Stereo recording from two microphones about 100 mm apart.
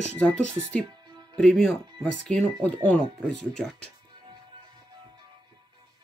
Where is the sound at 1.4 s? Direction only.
5° left (ahead or behind).